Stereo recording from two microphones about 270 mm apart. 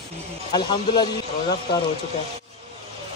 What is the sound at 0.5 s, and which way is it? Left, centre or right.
Speech, centre.